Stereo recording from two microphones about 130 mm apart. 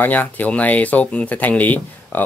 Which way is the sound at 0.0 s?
15° left (ahead or behind).